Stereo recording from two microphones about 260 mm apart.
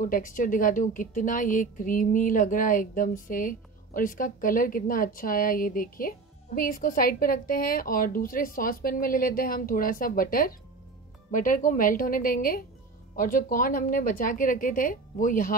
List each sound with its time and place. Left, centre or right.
0.0 s a woman's voice: left